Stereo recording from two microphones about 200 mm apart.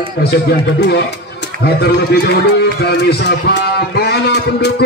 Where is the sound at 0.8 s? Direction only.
55° left (ahead or behind).